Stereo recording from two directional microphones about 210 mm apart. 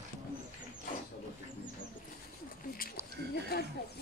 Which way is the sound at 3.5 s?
50° left (ahead or behind).